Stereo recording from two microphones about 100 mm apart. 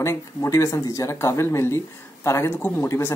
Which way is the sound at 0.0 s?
30° left (ahead or behind).